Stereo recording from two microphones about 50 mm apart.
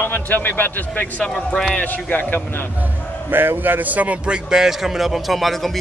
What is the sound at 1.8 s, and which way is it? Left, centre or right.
Speech, left.